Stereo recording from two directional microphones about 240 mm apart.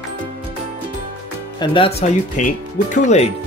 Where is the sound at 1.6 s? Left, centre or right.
Left.